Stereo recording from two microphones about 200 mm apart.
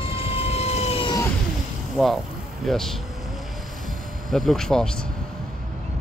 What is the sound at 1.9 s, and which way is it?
Speech, centre (ahead or behind).